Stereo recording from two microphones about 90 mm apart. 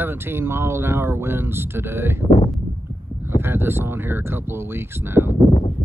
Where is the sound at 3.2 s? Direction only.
25° right (ahead or behind).